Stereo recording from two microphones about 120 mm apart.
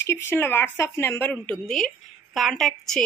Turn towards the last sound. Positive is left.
turn(degrees=5)  # may be behind; listen again after turning